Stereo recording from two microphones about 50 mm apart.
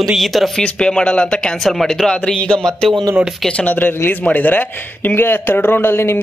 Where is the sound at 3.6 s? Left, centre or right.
Left.